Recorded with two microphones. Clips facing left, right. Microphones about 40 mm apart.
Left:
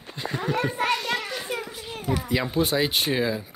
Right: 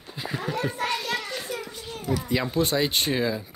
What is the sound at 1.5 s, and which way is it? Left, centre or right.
Children playing, left.